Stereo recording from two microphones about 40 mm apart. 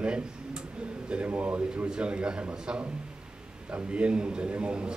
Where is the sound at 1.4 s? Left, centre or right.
Right.